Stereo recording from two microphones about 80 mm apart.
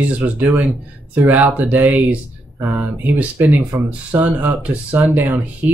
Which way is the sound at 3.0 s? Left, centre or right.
Centre.